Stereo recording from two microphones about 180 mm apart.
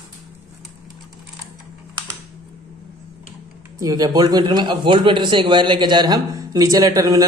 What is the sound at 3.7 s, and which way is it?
A man's voice, 20° right (ahead or behind).